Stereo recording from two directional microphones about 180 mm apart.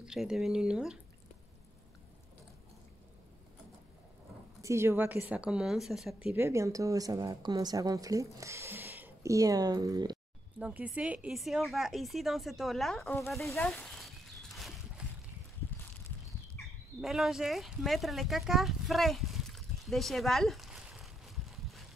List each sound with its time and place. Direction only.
0.0 s speech: 5° right (ahead or behind)
4.6 s a woman's voice: 15° right (ahead or behind)
6.3 s a woman's voice: 15° right (ahead or behind)
10.6 s speech: 5° right (ahead or behind)
13.5 s a sound: 10° left (ahead or behind)
17.0 s speech: centre (ahead or behind)